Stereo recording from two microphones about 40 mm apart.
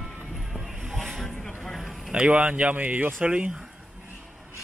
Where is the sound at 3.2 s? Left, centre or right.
Right.